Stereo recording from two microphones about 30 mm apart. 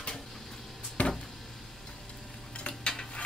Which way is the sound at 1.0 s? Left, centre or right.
Left.